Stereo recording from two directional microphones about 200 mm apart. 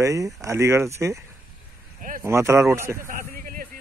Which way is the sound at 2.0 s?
45° right (ahead or behind).